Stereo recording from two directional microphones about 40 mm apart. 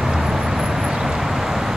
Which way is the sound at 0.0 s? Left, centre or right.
Centre.